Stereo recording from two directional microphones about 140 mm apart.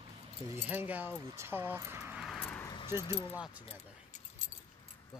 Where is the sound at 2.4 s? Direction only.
15° left (ahead or behind).